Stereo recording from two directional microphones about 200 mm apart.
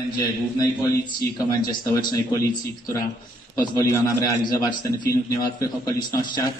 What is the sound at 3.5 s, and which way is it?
A man's voice, 20° left (ahead or behind).